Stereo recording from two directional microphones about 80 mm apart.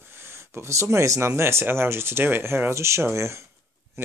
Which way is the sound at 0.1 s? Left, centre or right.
Right.